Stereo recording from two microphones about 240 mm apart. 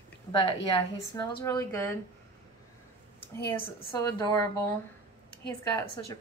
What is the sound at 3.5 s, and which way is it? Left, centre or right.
Speech, centre.